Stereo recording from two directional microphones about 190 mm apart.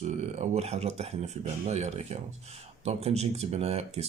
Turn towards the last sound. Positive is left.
turn(degrees=-35)  # may be behind; listen again after turning